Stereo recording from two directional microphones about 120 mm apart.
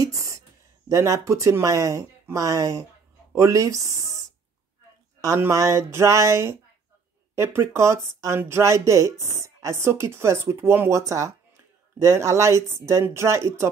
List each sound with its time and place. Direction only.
0.0 s a sound: 25° right (ahead or behind)
0.8 s speech: 25° right (ahead or behind)
5.2 s speech: 25° right (ahead or behind)